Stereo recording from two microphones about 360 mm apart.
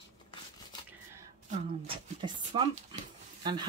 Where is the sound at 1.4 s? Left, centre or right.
Centre.